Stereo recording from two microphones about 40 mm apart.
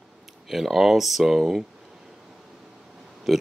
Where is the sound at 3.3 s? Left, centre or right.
Centre.